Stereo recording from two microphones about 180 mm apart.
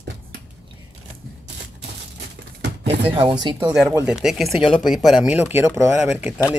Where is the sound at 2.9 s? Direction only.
30° right (ahead or behind).